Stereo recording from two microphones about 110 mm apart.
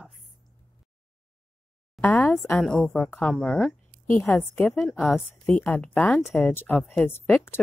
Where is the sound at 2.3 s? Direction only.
25° left (ahead or behind).